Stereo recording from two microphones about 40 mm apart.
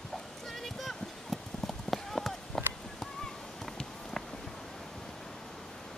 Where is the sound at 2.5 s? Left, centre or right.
Centre.